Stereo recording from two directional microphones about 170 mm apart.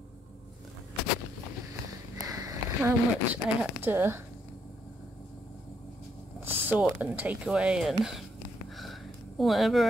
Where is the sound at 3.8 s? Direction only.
15° right (ahead or behind).